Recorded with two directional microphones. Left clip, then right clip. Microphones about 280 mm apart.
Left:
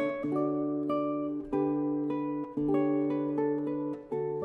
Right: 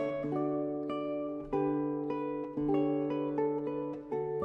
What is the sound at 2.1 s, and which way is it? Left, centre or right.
Music, left.